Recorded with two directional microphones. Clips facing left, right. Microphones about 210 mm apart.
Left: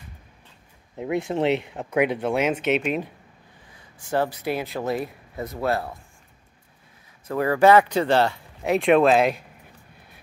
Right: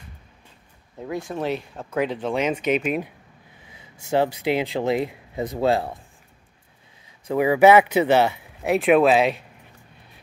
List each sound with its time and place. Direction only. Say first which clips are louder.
0.9 s speech: left 4 dB; 20° left (ahead or behind); by 3.1 s 5° right (ahead or behind)
4.1 s speech: right 3 dB; 20° right (ahead or behind)
7.2 s speech: right 2 dB; 10° right (ahead or behind)